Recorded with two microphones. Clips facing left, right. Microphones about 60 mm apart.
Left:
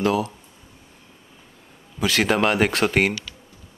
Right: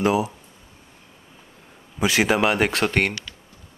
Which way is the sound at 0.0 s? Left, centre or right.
Centre.